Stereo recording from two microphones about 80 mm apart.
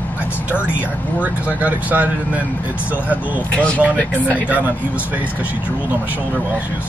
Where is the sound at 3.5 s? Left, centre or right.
Centre.